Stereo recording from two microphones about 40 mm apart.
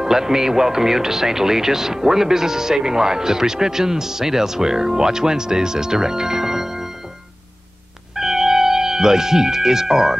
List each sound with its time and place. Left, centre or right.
0.0 s speech: centre
8.2 s music: centre